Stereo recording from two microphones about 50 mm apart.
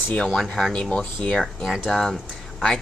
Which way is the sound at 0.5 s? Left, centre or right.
Centre.